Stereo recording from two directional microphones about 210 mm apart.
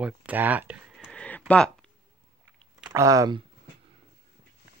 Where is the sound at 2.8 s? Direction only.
15° right (ahead or behind).